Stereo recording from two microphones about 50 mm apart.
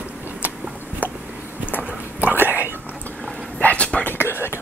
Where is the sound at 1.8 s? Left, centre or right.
Right.